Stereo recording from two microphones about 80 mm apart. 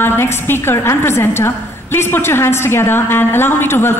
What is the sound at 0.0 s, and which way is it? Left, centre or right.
A woman's voice, left.